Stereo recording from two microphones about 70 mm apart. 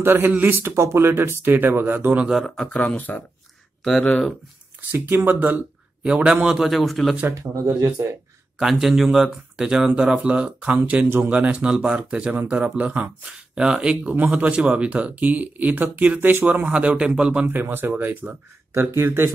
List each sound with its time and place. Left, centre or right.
0.0 s speech: right
2.4 s speech: centre
3.0 s speech: left
4.0 s speech: centre
4.9 s speech: right
6.0 s a man's voice: centre
7.3 s speech: right
8.5 s speech: centre
17.5 s speech: right